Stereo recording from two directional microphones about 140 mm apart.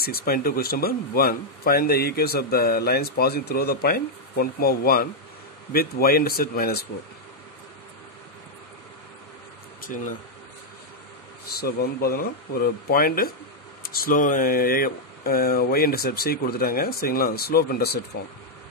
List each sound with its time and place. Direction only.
0.0 s speech: 90° left
9.8 s speech: 75° left (ahead or behind)
11.5 s speech: 90° left